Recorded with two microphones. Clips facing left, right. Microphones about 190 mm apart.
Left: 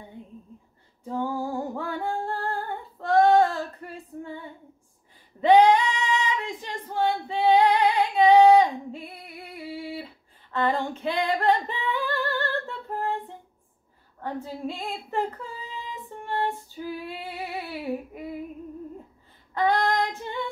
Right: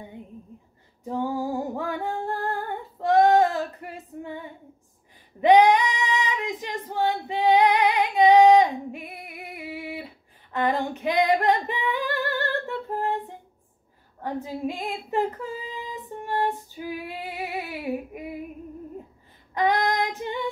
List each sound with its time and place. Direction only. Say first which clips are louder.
1.0 s female singing: right 2 dB; 15° right (ahead or behind)
14.2 s child singing: right 3 dB; 15° right (ahead or behind)
19.5 s female singing: even; 15° right (ahead or behind)